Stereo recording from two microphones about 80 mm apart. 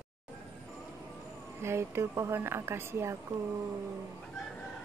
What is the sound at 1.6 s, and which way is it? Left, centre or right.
A woman's voice, right.